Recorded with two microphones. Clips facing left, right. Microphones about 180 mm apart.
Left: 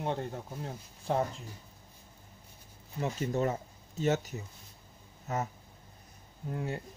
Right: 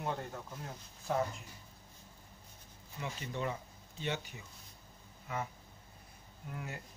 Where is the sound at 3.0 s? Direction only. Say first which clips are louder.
Left 9 dB; 45° left (ahead or behind).